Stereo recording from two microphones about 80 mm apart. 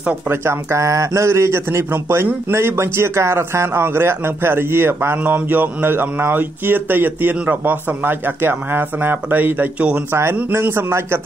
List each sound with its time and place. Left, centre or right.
0.3 s a man's voice: right; by 10.0 s centre
10.5 s a man's voice: right